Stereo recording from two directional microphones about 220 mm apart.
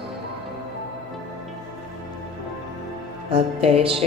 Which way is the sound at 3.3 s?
25° right (ahead or behind).